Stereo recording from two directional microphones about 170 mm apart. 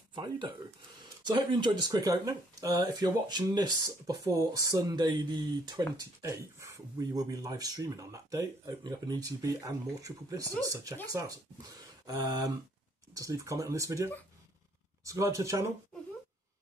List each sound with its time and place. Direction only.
0.1 s speech: 25° right (ahead or behind)
13.1 s speech: 20° right (ahead or behind)